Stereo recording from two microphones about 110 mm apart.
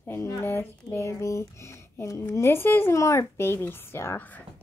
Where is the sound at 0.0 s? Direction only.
20° left (ahead or behind).